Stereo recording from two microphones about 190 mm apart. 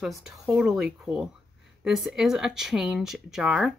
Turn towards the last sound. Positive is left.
turn(degrees=-5)  # may be behind; listen again after turning